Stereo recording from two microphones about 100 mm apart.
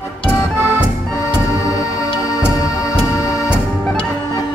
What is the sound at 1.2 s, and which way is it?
Music, 35° left (ahead or behind).